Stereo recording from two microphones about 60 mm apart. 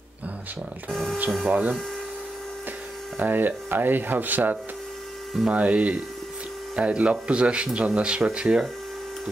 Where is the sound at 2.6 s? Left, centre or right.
Right.